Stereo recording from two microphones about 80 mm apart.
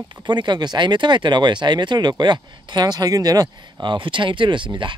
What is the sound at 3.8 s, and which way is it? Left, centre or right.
Speech, right.